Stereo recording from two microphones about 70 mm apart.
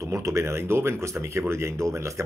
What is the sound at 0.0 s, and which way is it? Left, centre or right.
Speech, right.